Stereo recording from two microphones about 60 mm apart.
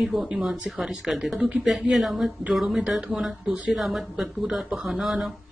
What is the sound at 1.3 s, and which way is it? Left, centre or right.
Speech, right.